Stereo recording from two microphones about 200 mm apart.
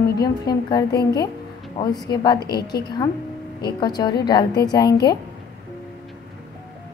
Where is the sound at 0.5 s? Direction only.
20° left (ahead or behind).